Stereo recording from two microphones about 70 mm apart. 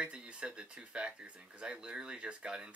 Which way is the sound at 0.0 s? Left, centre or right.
Centre.